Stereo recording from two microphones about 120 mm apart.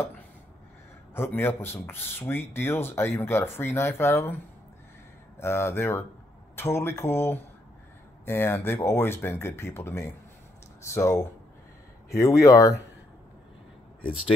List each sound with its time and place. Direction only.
1.1 s speech: 20° left (ahead or behind)
5.4 s speech: 20° left (ahead or behind)